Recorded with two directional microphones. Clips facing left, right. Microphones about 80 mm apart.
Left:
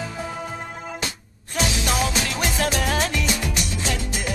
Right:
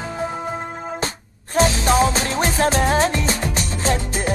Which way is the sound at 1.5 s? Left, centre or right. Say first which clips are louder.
Right 7 dB; right.